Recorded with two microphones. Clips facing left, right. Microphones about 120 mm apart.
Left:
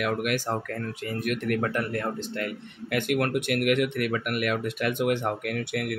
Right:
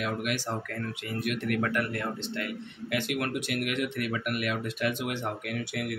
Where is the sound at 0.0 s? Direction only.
55° left (ahead or behind).